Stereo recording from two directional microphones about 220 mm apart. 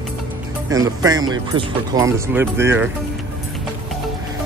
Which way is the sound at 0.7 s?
15° right (ahead or behind).